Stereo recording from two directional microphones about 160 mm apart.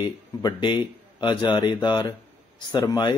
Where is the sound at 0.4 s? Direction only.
25° left (ahead or behind).